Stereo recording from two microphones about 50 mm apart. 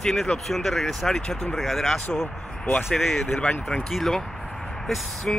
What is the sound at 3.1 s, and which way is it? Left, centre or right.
Speech, centre.